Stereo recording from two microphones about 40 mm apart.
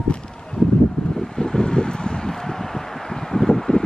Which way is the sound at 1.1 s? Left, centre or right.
Centre.